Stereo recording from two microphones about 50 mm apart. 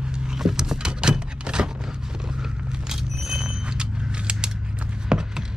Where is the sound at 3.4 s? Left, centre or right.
Centre.